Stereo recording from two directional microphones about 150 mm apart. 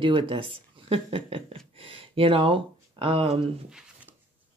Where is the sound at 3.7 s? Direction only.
5° right (ahead or behind).